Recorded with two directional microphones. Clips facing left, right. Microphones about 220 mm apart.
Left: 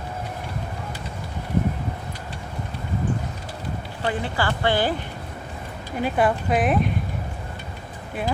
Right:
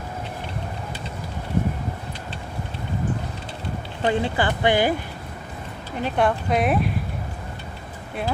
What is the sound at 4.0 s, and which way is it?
Speech, 20° right (ahead or behind).